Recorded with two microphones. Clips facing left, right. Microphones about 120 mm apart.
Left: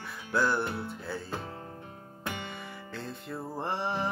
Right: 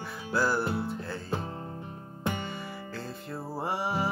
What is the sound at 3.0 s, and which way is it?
Music, centre (ahead or behind).